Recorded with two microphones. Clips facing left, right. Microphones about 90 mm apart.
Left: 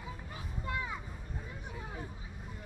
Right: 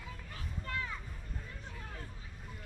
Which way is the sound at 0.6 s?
15° left (ahead or behind).